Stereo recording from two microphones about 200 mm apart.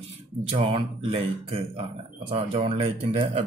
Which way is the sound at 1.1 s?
30° right (ahead or behind).